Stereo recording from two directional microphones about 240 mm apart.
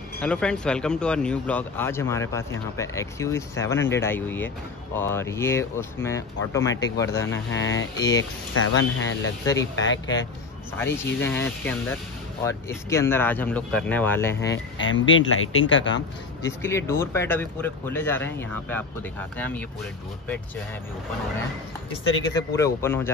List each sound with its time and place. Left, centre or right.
0.2 s speech: centre
7.2 s speech: left
11.1 s speech: centre
14.4 s speech: left
16.4 s speech: centre
22.3 s speech: centre